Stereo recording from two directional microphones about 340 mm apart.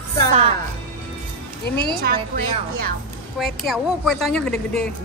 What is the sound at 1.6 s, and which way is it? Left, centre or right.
Speech, left.